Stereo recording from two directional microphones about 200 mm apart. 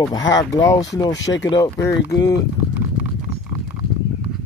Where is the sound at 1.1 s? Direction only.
65° left (ahead or behind).